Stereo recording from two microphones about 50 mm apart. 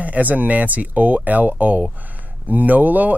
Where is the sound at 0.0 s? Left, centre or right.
Right.